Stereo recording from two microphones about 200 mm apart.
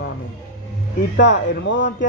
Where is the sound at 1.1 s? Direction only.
60° left (ahead or behind).